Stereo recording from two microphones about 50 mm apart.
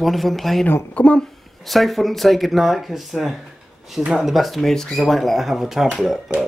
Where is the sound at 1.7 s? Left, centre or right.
Centre.